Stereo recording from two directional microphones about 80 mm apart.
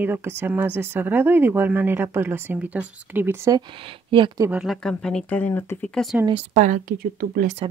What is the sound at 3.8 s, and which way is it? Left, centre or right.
Speech, right.